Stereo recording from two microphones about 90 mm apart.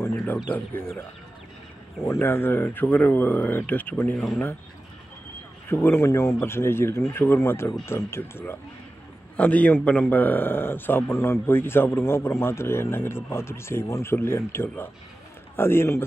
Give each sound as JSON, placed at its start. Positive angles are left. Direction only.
{"t": 0.0, "sound": "a sound", "side_deg": 25}
{"t": 0.5, "sound": "a man's voice", "side_deg": 25}
{"t": 2.0, "sound": "a man's voice", "side_deg": 30}
{"t": 4.1, "sound": "speech", "side_deg": 5}
{"t": 5.7, "sound": "a man's voice", "side_deg": 30}